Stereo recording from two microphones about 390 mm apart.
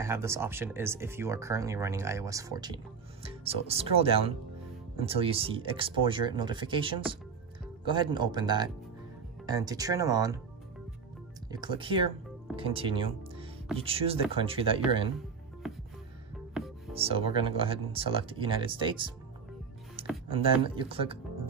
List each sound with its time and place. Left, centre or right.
0.0 s speech: centre
11.5 s speech: centre
15.6 s music: centre
16.9 s speech: centre
20.2 s speech: centre